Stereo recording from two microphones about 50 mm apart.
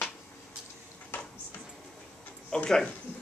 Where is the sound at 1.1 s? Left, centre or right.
Left.